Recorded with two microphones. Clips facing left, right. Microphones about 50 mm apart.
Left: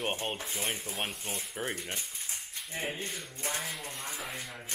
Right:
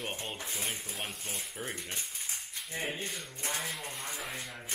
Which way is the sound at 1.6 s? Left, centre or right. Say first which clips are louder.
Left 5 dB; left.